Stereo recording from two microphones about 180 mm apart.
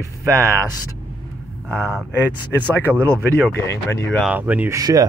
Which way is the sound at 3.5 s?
15° left (ahead or behind).